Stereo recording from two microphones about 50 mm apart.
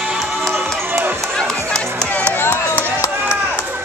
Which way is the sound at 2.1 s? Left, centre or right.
Left.